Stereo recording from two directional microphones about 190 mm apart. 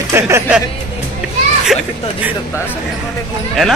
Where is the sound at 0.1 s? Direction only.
15° right (ahead or behind).